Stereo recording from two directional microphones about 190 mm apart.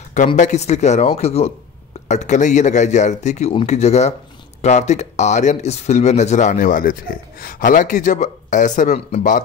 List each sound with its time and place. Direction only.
0.4 s speech: 35° left (ahead or behind)